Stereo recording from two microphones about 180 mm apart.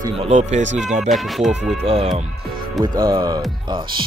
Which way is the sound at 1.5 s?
35° right (ahead or behind).